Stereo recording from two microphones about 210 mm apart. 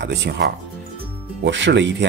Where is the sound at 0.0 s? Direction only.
55° right (ahead or behind).